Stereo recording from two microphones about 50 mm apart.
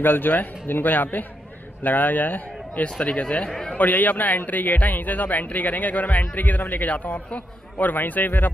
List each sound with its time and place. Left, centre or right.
0.0 s a man's voice: left
2.8 s speech: left
3.4 s a man's voice: centre
3.7 s a man's voice: left